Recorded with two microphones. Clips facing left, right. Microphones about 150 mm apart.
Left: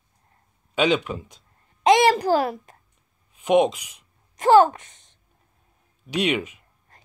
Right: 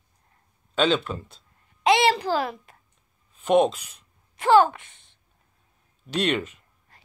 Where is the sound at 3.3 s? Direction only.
10° left (ahead or behind).